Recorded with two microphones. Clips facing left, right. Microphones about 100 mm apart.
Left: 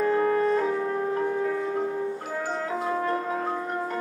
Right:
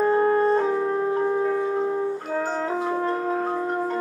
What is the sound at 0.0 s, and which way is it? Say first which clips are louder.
Music: right 3 dB; 35° right (ahead or behind).